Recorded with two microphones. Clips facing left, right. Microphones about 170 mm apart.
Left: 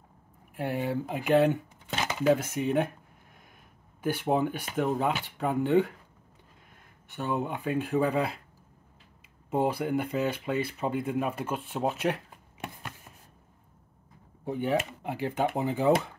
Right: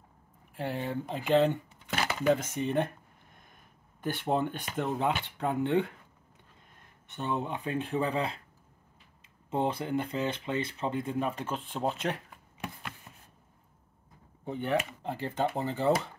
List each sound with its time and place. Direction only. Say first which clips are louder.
0.6 s speech: left 3 dB; 10° left (ahead or behind)
1.9 s dishes: even; 20° left (ahead or behind)
2.2 s speech: left 3 dB; 10° left (ahead or behind)
4.0 s speech: left 3 dB; 5° left (ahead or behind)
7.2 s speech: left 2 dB; 5° left (ahead or behind)
9.5 s speech: left 3 dB; 10° left (ahead or behind)
14.4 s speech: left 2 dB; 10° left (ahead or behind)